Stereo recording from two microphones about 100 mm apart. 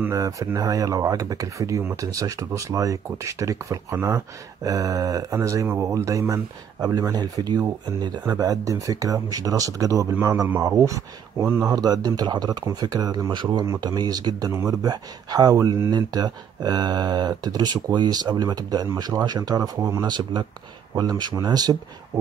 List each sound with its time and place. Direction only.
0.1 s speech: 30° right (ahead or behind)
6.8 s speech: 45° right (ahead or behind)